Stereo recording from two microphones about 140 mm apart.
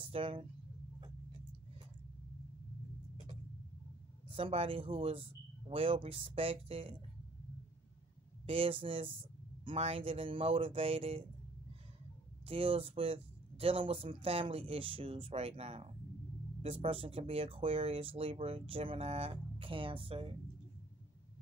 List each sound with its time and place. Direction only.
0.0 s speech: 40° right (ahead or behind)
4.3 s speech: 40° right (ahead or behind)
8.5 s speech: 40° right (ahead or behind)
12.4 s speech: 40° right (ahead or behind)